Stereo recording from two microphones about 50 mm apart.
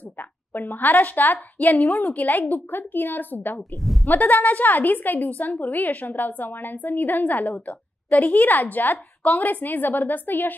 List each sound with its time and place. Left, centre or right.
0.2 s a woman's voice: left